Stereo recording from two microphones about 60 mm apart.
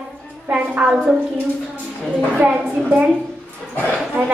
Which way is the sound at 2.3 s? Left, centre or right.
Right.